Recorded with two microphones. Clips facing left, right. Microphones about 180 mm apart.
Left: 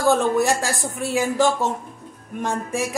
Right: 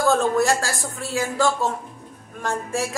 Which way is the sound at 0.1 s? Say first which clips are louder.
Left 1 dB; 15° left (ahead or behind).